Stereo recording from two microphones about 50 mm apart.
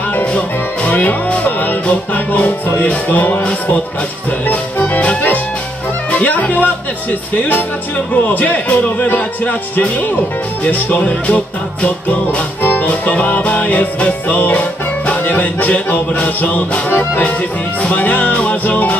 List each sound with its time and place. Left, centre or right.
0.1 s music: left
4.5 s music: left